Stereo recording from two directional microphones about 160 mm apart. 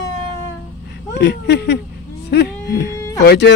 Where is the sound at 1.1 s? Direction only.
90° left.